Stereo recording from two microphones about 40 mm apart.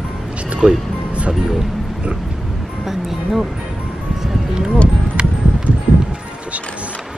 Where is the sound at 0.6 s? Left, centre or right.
Right.